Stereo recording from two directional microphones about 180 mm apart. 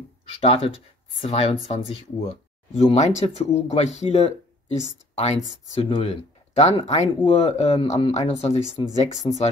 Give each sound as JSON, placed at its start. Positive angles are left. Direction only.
{"t": 0.4, "sound": "speech", "side_deg": 30}